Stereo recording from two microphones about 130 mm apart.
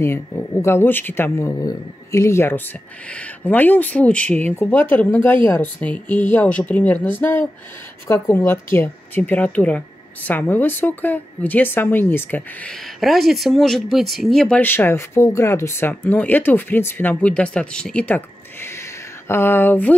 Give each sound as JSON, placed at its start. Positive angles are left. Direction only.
{"t": 0.0, "sound": "speech", "side_deg": 20}
{"t": 13.0, "sound": "speech", "side_deg": 0}
{"t": 14.6, "sound": "speech", "side_deg": 15}